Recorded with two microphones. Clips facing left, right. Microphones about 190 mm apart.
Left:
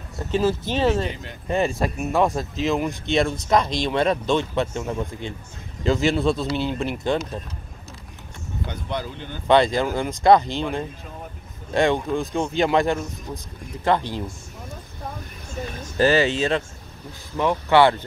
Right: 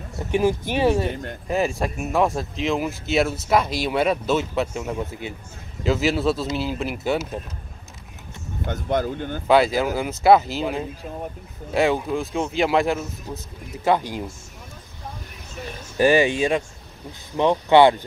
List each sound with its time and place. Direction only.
0.3 s speech: 15° right (ahead or behind)
1.5 s speech: centre (ahead or behind)
8.6 s speech: 45° right (ahead or behind)
9.5 s speech: 5° right (ahead or behind)
15.8 s speech: 15° right (ahead or behind)